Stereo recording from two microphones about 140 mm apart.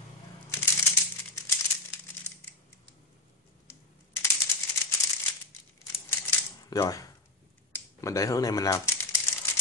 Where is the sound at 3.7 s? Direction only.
20° left (ahead or behind).